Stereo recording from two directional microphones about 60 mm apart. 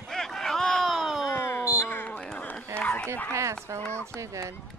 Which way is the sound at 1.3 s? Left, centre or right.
Left.